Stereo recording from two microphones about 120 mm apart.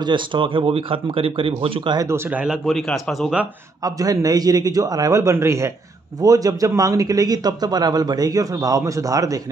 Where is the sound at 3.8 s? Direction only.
30° right (ahead or behind).